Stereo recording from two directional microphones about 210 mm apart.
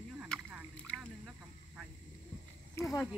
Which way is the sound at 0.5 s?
5° right (ahead or behind).